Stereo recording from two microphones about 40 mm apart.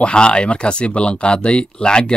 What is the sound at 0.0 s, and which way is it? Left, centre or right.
Speech, left.